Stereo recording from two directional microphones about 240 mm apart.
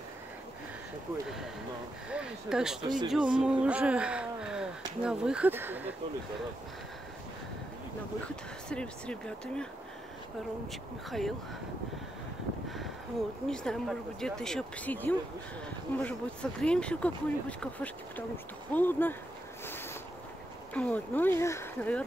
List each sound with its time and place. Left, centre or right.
2.0 s speech: centre
8.6 s speech: centre
10.7 s speech: centre
12.6 s a sound: centre
13.5 s speech: centre
19.6 s a sound: centre
20.7 s speech: centre